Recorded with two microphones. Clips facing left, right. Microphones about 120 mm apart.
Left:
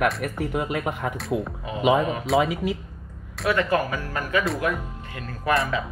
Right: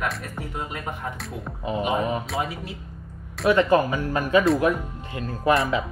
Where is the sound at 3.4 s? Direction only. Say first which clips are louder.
Right 4 dB; 20° right (ahead or behind).